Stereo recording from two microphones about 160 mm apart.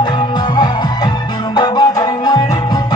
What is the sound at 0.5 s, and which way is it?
Music, 25° left (ahead or behind).